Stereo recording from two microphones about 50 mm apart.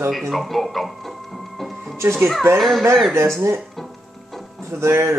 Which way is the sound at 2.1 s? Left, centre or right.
Centre.